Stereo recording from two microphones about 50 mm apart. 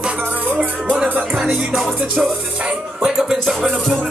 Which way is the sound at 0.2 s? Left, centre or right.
Right.